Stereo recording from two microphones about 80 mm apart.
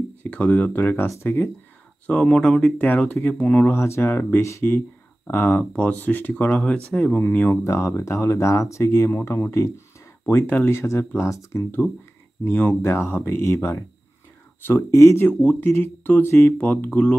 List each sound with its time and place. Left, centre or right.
0.2 s speech: centre
1.0 s speech: left
2.0 s speech: centre
3.6 s speech: left
5.6 s speech: centre
7.6 s speech: left
12.4 s speech: left
12.8 s speech: left
15.2 s speech: left